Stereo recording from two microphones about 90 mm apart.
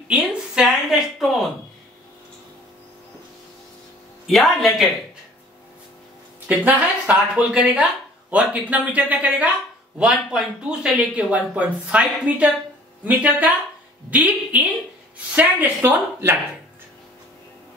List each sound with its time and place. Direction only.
0.1 s a sound: 10° right (ahead or behind)
4.3 s speech: centre (ahead or behind)
6.4 s speech: 15° right (ahead or behind)